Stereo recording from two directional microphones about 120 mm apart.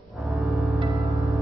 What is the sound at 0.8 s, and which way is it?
Music, 25° right (ahead or behind).